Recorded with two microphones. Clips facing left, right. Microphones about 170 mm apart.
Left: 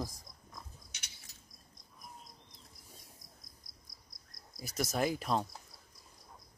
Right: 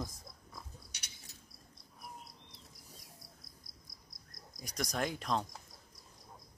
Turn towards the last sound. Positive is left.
turn(degrees=5)  # may be behind; listen again after turning